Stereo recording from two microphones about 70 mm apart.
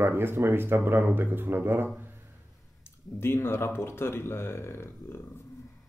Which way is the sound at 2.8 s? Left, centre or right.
Left.